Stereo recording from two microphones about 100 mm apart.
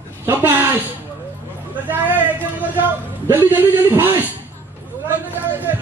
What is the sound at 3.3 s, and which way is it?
Speech, 20° right (ahead or behind).